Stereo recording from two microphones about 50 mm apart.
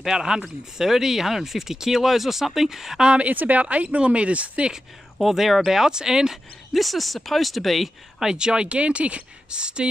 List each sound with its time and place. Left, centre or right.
0.0 s speech: centre
3.1 s speech: right
5.2 s speech: centre
6.7 s speech: centre